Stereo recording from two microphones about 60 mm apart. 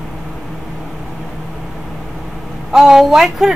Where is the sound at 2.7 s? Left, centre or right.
Centre.